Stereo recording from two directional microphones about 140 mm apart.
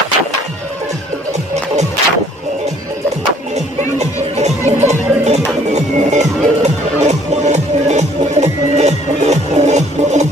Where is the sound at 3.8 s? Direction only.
50° right (ahead or behind).